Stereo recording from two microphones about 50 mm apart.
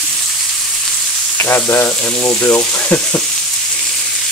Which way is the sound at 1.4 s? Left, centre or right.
Left.